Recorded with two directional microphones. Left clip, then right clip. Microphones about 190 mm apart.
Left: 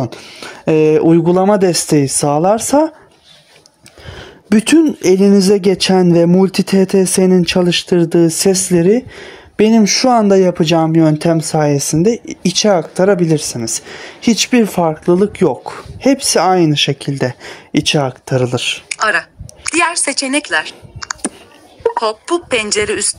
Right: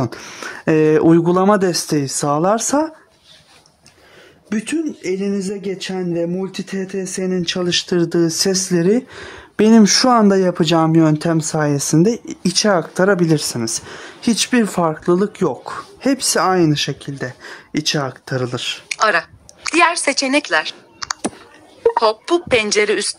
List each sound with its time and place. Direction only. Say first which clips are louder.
0.0 s speech: left 1 dB; centre (ahead or behind)
4.5 s speech: left 11 dB; 40° left (ahead or behind); by 16.9 s 10° left (ahead or behind)
17.0 s speech: left 9 dB; 20° left (ahead or behind)
17.5 s speech: left 3 dB; 10° left (ahead or behind)